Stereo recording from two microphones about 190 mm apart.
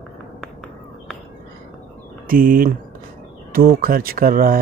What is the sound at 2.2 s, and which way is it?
Speech, 45° right (ahead or behind).